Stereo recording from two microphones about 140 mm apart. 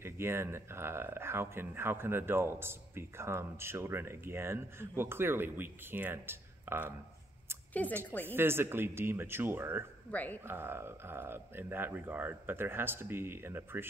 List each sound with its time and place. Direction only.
0.0 s speech: 20° right (ahead or behind)
7.8 s speech: 10° left (ahead or behind)
8.3 s speech: 15° right (ahead or behind)
10.1 s speech: 10° left (ahead or behind)
10.4 s speech: 15° right (ahead or behind)